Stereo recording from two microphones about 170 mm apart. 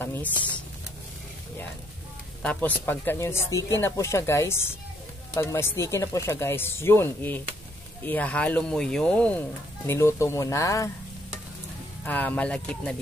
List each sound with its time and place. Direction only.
0.0 s speech: 10° left (ahead or behind)
2.4 s speech: 10° left (ahead or behind)
12.0 s speech: 10° left (ahead or behind)